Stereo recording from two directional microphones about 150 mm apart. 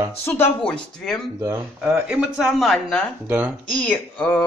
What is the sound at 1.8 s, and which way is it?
Speech, 5° right (ahead or behind).